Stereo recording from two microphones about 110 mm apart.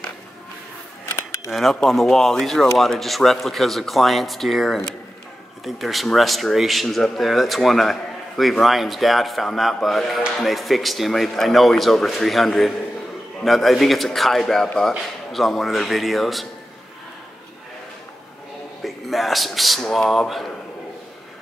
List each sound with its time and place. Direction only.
1.1 s a sound: 25° left (ahead or behind)
1.5 s speech: centre (ahead or behind)
18.8 s speech: centre (ahead or behind)